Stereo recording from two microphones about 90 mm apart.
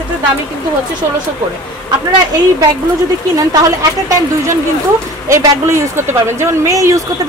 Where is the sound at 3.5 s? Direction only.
40° right (ahead or behind).